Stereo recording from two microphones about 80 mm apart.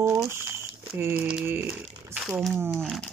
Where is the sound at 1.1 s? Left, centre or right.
Centre.